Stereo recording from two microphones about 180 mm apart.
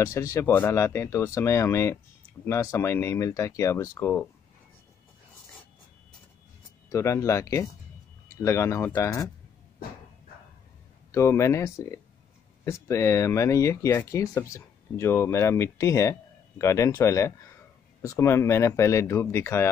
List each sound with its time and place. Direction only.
0.0 s speech: 15° left (ahead or behind)
6.9 s speech: 15° left (ahead or behind)
11.1 s speech: 15° left (ahead or behind)